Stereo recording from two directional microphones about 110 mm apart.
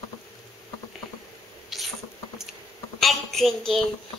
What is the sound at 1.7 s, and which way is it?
Patter, centre (ahead or behind).